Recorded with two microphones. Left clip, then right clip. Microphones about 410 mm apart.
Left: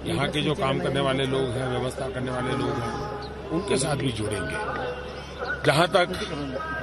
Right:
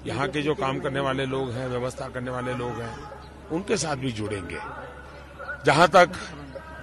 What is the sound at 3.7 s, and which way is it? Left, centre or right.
Speech, right.